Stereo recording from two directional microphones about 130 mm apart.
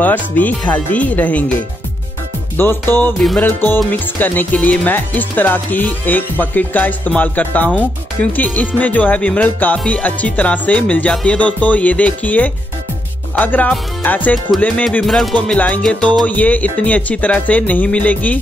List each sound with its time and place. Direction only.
0.0 s speech: 15° left (ahead or behind)
2.5 s speech: 15° left (ahead or behind)